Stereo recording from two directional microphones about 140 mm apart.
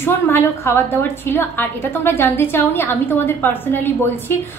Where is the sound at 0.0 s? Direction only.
15° left (ahead or behind).